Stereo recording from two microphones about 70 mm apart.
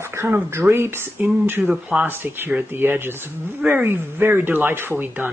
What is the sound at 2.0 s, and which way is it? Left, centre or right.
Speech, right.